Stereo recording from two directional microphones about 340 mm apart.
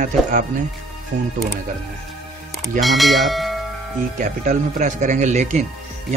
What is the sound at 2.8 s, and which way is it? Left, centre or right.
Speech, centre.